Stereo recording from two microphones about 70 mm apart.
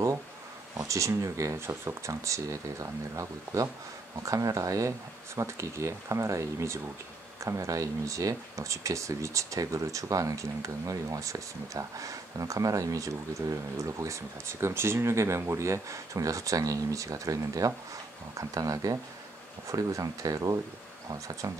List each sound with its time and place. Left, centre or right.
0.7 s speech: right